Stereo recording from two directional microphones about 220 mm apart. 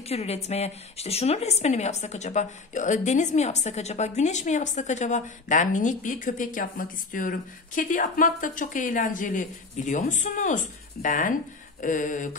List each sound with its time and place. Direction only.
0.0 s a woman's voice: 30° left (ahead or behind)